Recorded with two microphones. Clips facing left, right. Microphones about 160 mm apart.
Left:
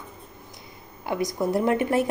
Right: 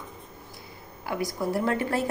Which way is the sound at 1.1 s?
20° left (ahead or behind).